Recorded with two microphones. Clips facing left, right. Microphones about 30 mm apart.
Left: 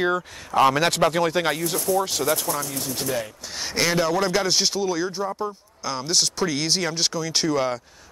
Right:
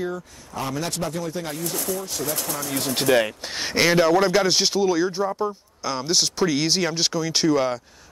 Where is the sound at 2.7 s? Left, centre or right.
Right.